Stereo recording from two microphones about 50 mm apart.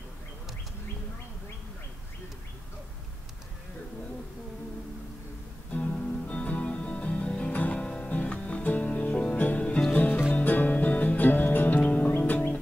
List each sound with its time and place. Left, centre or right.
5.7 s music: left